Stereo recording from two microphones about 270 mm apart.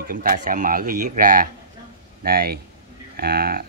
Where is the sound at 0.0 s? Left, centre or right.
Right.